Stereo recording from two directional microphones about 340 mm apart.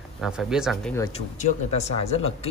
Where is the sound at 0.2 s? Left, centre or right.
Centre.